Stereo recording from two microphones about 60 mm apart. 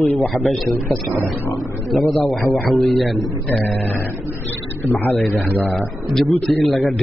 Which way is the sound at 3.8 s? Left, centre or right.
Left.